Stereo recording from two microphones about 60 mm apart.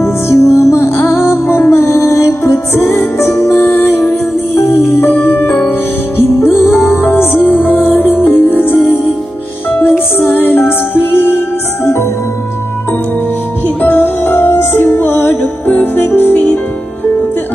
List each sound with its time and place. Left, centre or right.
0.0 s music: left
10.1 s music: left
13.7 s music: left